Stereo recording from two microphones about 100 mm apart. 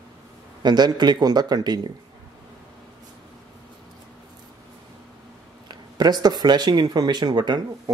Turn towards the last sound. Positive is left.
turn(degrees=-45)  # may be behind; listen again after turning